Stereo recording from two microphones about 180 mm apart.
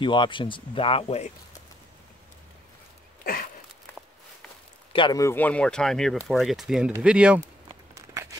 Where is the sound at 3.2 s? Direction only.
55° left (ahead or behind).